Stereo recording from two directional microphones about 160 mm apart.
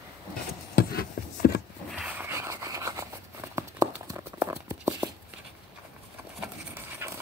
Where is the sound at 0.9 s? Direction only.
75° left (ahead or behind).